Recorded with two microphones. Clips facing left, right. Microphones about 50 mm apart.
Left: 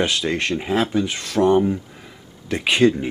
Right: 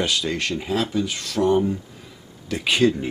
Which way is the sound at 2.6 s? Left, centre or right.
Left.